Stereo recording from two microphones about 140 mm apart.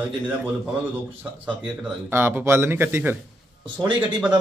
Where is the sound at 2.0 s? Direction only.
15° right (ahead or behind).